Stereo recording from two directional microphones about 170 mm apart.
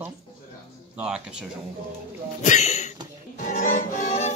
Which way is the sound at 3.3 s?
50° left (ahead or behind).